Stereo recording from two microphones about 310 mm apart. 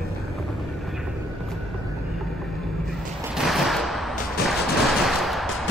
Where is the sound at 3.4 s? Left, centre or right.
Centre.